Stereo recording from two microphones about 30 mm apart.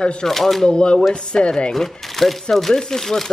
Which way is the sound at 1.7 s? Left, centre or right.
Centre.